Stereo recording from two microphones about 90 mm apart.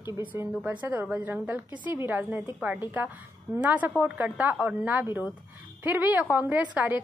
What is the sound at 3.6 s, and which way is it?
A woman's voice, 15° right (ahead or behind).